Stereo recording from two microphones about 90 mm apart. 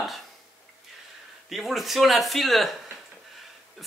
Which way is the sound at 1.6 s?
Centre (ahead or behind).